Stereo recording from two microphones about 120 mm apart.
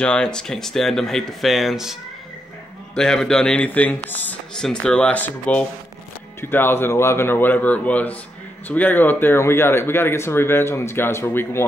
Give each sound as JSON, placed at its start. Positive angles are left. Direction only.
{"t": 0.0, "sound": "speech", "side_deg": 10}